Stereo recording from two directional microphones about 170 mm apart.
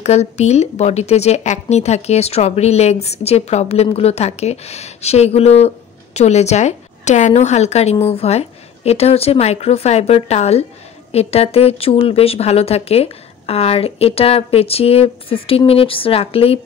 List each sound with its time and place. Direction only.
0.0 s speech: 40° left (ahead or behind)